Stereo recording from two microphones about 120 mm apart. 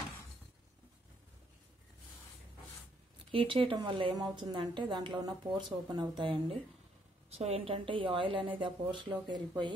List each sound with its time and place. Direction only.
3.3 s a woman's voice: 45° right (ahead or behind)
7.2 s a woman's voice: 60° right (ahead or behind); by 9.1 s 45° right (ahead or behind)